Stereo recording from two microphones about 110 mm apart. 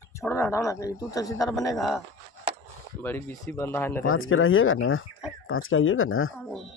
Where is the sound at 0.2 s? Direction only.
25° left (ahead or behind).